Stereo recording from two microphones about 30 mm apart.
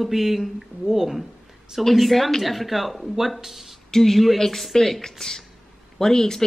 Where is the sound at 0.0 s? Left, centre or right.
Centre.